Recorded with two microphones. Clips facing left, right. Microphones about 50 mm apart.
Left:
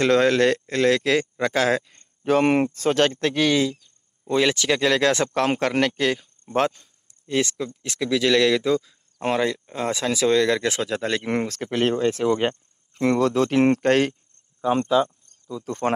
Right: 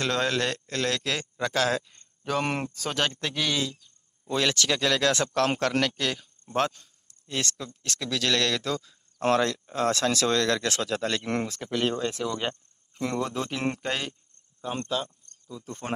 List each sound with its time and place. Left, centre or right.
0.0 s speech: left
4.3 s speech: centre
7.2 s a man's voice: centre
11.4 s speech: left
12.9 s speech: left
13.2 s speech: left
13.5 s speech: left
13.7 s speech: left
14.6 s a man's voice: centre